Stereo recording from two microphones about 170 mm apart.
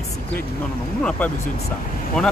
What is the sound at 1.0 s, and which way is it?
Speech, 10° left (ahead or behind).